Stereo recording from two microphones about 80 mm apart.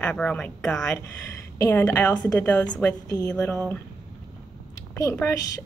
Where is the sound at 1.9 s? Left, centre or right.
Centre.